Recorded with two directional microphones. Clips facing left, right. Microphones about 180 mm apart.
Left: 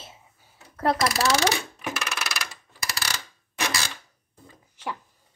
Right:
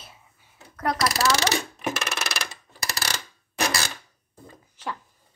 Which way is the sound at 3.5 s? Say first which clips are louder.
Right 3 dB; 40° right (ahead or behind).